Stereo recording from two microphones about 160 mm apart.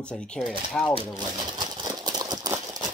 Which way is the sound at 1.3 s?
30° right (ahead or behind).